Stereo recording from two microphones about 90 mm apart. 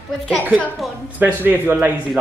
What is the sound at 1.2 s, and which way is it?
Speech, 20° right (ahead or behind).